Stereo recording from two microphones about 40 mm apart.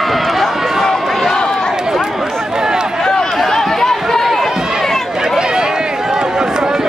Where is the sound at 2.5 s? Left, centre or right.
Centre.